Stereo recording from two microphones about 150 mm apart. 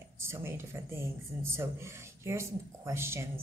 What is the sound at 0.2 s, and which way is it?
Speech, 15° right (ahead or behind).